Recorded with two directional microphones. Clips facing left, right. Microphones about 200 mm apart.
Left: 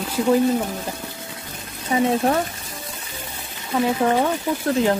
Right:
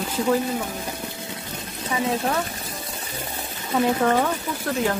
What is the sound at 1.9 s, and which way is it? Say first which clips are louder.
Speech: left 6 dB; 30° left (ahead or behind).